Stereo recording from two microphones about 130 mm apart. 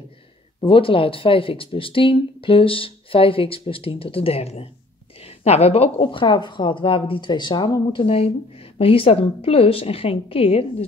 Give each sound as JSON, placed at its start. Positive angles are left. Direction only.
{"t": 0.6, "sound": "speech", "side_deg": 45}
{"t": 8.0, "sound": "speech", "side_deg": 50}